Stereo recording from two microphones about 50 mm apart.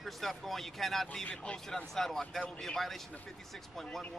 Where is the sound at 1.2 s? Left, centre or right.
Left.